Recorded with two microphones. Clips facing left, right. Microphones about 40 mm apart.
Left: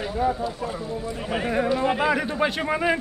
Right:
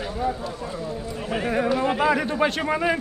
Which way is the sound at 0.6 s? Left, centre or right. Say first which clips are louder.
Left 1 dB; left.